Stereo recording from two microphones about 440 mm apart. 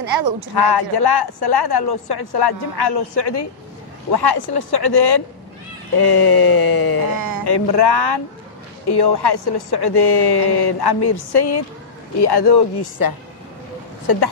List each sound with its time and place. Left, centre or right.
0.0 s speech: right
0.6 s a woman's voice: left
7.2 s speech: right
7.4 s a woman's voice: left
13.0 s speech: left